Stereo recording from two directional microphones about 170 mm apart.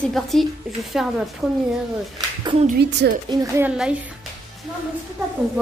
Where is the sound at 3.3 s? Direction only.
20° right (ahead or behind).